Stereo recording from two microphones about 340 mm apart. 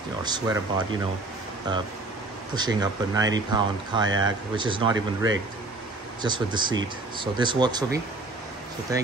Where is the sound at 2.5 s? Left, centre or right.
Centre.